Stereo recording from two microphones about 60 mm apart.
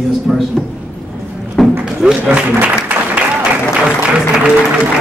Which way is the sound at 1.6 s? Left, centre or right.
Centre.